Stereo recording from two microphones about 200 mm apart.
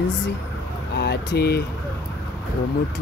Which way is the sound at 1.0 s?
60° left (ahead or behind).